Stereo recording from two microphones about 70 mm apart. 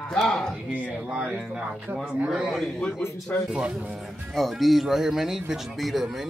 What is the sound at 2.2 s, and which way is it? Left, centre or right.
Speech, centre.